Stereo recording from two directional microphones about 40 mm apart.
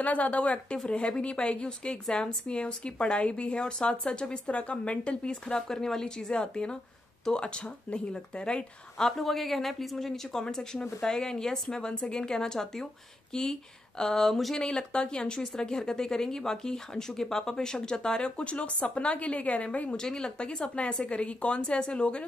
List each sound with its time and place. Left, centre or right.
0.0 s a woman's voice: left
0.8 s a woman's voice: left
8.9 s speech: centre
10.4 s speech: centre
14.6 s speech: left
18.4 s a woman's voice: left
20.0 s a woman's voice: centre